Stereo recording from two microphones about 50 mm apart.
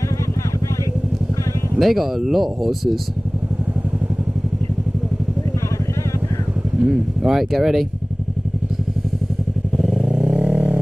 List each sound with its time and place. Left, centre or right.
1.8 s speech: centre
6.8 s speech: centre
9.8 s motorcycle: centre
10.3 s vehicle: right